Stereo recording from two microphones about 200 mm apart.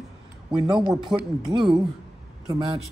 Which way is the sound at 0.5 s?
20° right (ahead or behind).